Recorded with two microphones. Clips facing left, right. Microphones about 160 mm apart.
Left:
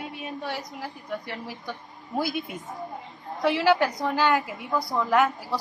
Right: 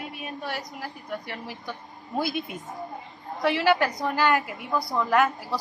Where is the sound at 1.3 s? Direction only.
20° right (ahead or behind).